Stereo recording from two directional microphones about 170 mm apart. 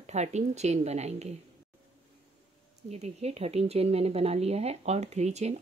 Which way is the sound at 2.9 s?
40° right (ahead or behind).